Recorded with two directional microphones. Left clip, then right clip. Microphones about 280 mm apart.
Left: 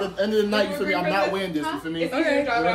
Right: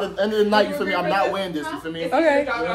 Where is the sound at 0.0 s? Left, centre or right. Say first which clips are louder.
Right 2 dB; centre.